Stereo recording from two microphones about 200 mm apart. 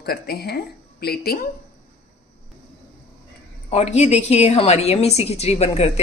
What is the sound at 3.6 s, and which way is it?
A woman's voice, 35° left (ahead or behind).